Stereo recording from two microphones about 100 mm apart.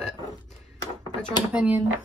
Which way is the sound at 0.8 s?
45° left (ahead or behind).